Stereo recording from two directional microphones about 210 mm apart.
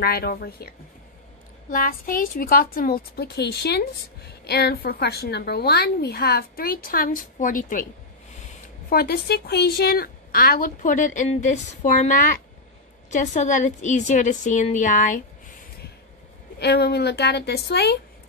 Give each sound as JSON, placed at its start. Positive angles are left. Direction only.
{"t": 0.0, "sound": "a woman's voice", "side_deg": 45}
{"t": 1.7, "sound": "a woman's voice", "side_deg": 40}
{"t": 8.9, "sound": "a woman's voice", "side_deg": 45}
{"t": 16.5, "sound": "a woman's voice", "side_deg": 50}